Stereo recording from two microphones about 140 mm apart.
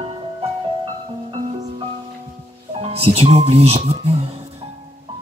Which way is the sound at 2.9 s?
45° right (ahead or behind).